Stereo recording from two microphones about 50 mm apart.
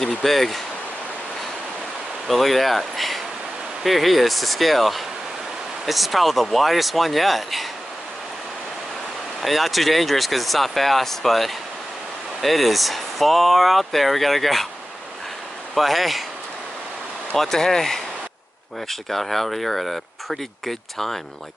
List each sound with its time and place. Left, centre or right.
0.2 s speech: centre
2.2 s speech: centre
9.4 s speech: centre
15.7 s speech: centre
17.4 s speech: centre